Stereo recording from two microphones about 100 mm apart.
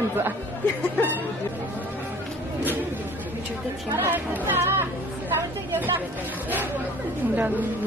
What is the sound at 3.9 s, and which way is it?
Speech, 20° right (ahead or behind).